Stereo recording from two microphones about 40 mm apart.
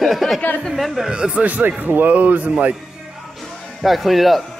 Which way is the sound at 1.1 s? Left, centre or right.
Right.